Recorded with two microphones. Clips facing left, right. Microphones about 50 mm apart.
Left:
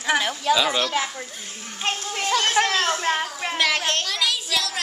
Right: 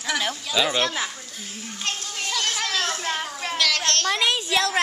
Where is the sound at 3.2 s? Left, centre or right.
Centre.